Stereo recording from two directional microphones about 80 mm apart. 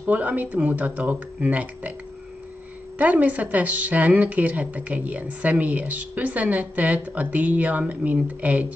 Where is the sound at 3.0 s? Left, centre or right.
Centre.